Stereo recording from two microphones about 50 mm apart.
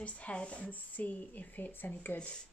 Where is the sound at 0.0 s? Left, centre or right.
Left.